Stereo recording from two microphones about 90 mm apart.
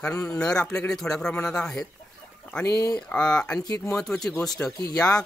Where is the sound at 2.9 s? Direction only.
10° left (ahead or behind).